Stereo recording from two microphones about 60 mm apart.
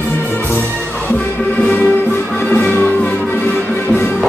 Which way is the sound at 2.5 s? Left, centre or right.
Left.